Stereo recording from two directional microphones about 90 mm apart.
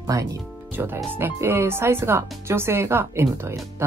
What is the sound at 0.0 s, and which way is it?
Speech, 40° right (ahead or behind).